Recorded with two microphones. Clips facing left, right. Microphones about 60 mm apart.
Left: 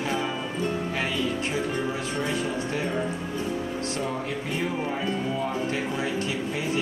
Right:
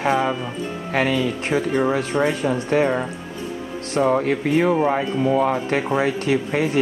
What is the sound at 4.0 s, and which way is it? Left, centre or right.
Speech, right.